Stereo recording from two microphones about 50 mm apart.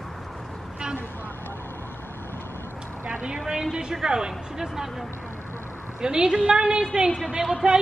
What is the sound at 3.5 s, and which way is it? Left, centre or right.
Speech, centre.